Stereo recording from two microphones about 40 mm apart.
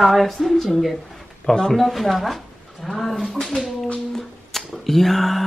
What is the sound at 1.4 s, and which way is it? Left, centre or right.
Speech, centre.